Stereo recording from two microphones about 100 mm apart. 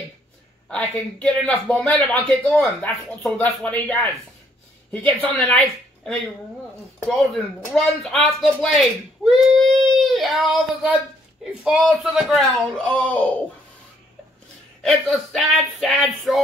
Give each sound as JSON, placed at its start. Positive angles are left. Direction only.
{"t": 0.7, "sound": "speech", "side_deg": 10}
{"t": 9.2, "sound": "child singing", "side_deg": 0}
{"t": 11.4, "sound": "a sound", "side_deg": -5}
{"t": 12.0, "sound": "speech", "side_deg": -5}
{"t": 12.8, "sound": "speech", "side_deg": 15}
{"t": 14.8, "sound": "speech", "side_deg": 0}